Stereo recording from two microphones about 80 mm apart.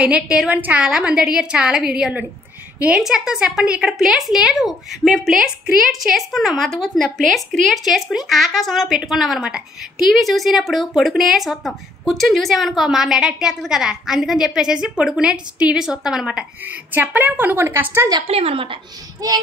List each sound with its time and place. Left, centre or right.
0.0 s a woman's voice: centre
0.8 s a woman's voice: centre
16.6 s a woman's voice: right
19.2 s child singing: right